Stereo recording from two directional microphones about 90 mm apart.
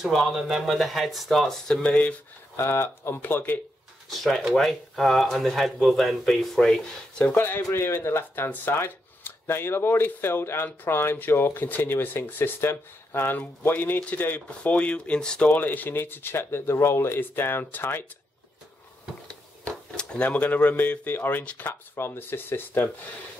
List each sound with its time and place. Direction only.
0.0 s speech: 5° right (ahead or behind)
2.5 s speech: 30° left (ahead or behind)
3.2 s speech: 20° left (ahead or behind)
4.1 s speech: centre (ahead or behind)
7.3 s speech: 25° left (ahead or behind)
19.7 s speech: 10° left (ahead or behind)